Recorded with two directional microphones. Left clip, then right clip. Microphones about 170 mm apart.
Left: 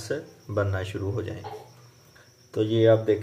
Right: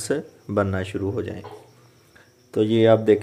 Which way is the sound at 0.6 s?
40° right (ahead or behind).